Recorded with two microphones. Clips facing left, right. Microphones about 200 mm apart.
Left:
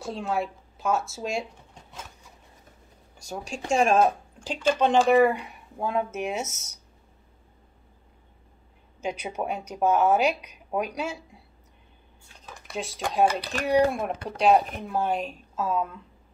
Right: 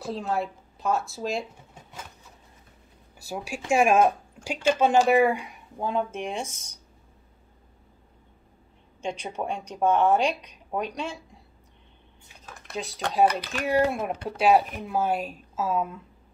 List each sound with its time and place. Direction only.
0.0 s speech: centre (ahead or behind)
3.2 s speech: 5° right (ahead or behind)
5.4 s speech: 5° left (ahead or behind)
9.0 s speech: 10° left (ahead or behind)
12.4 s speech: centre (ahead or behind)
13.3 s speech: 35° left (ahead or behind)
13.7 s speech: centre (ahead or behind)